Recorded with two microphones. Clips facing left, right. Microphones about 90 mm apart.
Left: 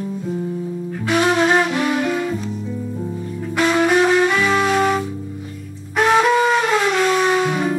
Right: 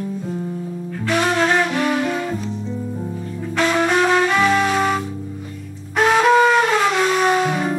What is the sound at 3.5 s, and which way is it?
Music, 5° left (ahead or behind).